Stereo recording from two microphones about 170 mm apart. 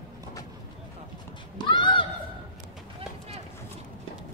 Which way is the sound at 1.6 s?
30° left (ahead or behind).